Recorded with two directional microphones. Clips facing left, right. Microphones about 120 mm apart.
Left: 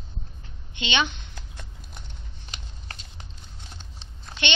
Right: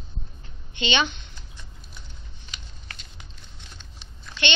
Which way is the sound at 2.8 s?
35° left (ahead or behind).